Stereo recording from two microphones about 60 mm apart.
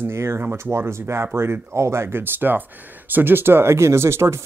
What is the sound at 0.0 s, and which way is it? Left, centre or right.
Speech, right.